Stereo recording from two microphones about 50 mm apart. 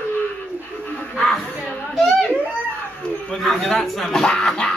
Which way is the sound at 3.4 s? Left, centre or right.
Centre.